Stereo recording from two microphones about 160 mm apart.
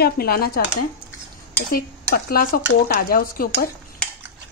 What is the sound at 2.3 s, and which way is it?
Speech, 65° left (ahead or behind).